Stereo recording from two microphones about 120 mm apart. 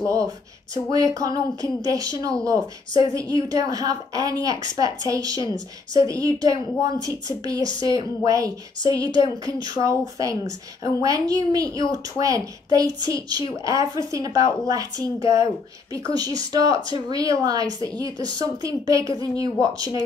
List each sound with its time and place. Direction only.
0.0 s a woman's voice: 25° right (ahead or behind)
7.8 s a woman's voice: 30° right (ahead or behind)